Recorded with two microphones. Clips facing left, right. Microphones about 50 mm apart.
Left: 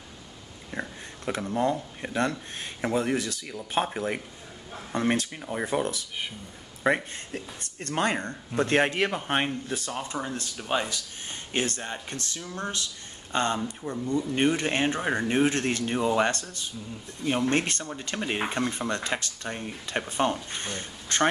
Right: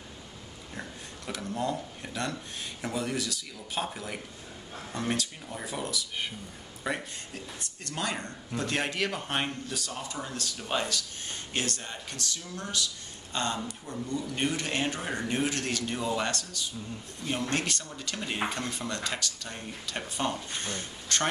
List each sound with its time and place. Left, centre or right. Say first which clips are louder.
0.7 s speech: left 6 dB; left
9.1 s speech: left 4 dB; centre